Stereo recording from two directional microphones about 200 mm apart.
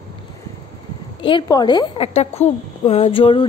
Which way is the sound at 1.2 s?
25° left (ahead or behind).